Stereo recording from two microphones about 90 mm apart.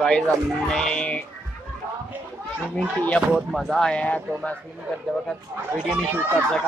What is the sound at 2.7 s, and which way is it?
Speech, 15° left (ahead or behind).